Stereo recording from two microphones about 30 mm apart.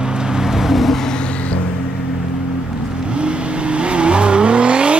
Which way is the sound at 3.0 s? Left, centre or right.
Right.